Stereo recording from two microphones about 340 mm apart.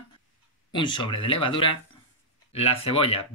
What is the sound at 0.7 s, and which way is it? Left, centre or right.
Speech, centre.